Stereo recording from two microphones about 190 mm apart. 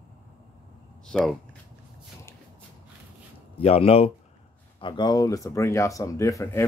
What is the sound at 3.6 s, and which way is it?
Speech, 30° left (ahead or behind).